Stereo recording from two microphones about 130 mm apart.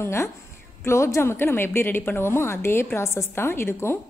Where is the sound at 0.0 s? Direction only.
20° left (ahead or behind).